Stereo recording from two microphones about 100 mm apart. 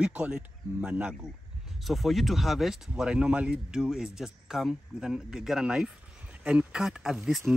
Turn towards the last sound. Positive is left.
turn(degrees=0)  # may be behind; listen again after turning